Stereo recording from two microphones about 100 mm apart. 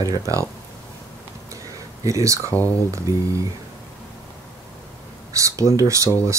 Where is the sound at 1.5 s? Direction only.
35° right (ahead or behind).